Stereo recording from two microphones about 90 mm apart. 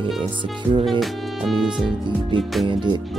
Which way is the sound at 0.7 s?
60° right (ahead or behind).